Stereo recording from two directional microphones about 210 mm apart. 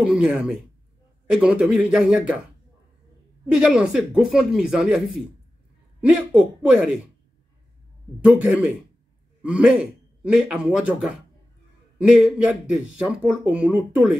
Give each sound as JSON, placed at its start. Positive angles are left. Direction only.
{"t": 0.0, "sound": "speech", "side_deg": -5}
{"t": 3.5, "sound": "speech", "side_deg": -5}
{"t": 8.3, "sound": "speech", "side_deg": -5}